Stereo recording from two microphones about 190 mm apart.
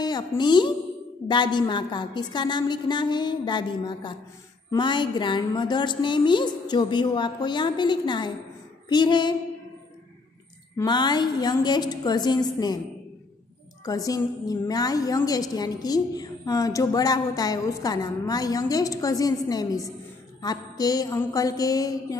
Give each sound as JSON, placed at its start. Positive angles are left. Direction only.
{"t": 0.0, "sound": "a woman's voice", "side_deg": 20}
{"t": 10.8, "sound": "a woman's voice", "side_deg": 25}
{"t": 13.8, "sound": "a woman's voice", "side_deg": 20}